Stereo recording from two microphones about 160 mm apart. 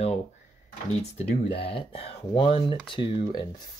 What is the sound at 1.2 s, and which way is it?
Speech, 40° left (ahead or behind).